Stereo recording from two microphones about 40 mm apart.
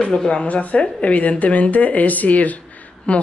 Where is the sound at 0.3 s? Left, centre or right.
Left.